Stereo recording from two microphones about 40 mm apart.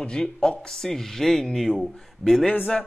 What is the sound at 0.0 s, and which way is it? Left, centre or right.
Speech, centre.